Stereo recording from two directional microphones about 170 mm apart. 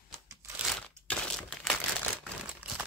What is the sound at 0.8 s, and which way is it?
Crumpling, centre (ahead or behind).